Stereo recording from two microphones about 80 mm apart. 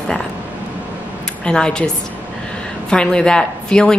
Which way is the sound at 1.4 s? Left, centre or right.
Centre.